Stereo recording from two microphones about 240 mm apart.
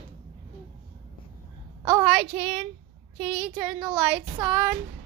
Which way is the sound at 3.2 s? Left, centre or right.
Right.